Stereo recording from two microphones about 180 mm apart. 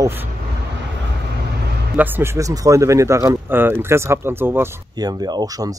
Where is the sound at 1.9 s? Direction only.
10° right (ahead or behind).